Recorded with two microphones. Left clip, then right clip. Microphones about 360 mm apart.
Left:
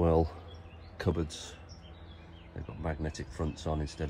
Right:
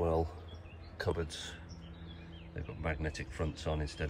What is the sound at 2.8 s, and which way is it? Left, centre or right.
Speech, right.